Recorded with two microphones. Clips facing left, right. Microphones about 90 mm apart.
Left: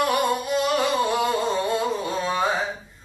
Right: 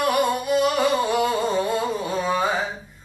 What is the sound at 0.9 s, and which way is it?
Music, 5° right (ahead or behind).